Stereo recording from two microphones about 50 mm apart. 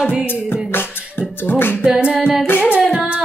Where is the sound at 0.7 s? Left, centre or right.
Left.